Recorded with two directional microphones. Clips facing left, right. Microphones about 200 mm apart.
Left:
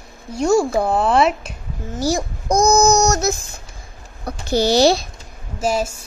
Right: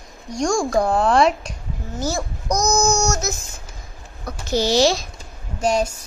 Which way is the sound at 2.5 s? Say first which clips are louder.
Left 6 dB; 55° left (ahead or behind).